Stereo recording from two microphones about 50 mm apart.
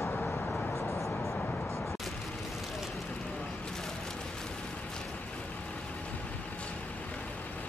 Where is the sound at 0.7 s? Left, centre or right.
Left.